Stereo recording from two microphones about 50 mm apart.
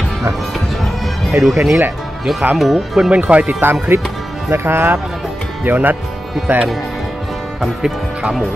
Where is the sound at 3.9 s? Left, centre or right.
Right.